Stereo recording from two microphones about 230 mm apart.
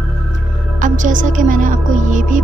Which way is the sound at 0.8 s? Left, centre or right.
Right.